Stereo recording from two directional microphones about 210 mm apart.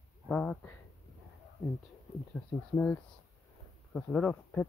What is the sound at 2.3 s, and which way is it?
Speech, 10° left (ahead or behind).